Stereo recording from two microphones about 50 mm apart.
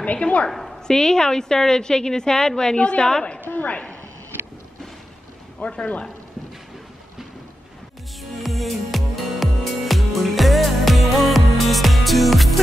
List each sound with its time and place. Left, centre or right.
0.0 s speech: left
0.5 s a sound: centre
0.8 s a woman's voice: centre
3.4 s a woman's voice: left
5.6 s speech: left
8.2 s music: centre